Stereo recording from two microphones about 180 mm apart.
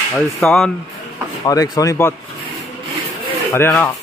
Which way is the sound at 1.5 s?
20° left (ahead or behind).